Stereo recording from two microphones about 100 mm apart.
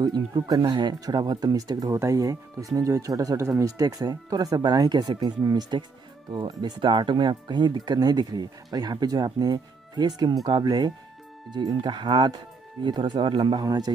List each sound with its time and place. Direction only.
0.0 s speech: 45° right (ahead or behind)